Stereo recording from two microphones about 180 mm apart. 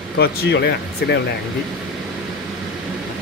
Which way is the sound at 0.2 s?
65° left (ahead or behind).